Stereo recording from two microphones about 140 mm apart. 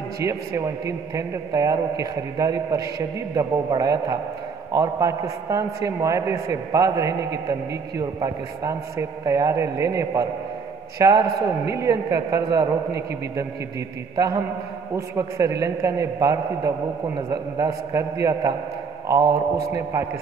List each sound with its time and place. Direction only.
0.2 s a man's voice: 20° right (ahead or behind)